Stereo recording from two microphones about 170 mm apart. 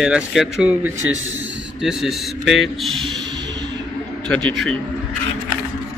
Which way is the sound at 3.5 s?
90° right.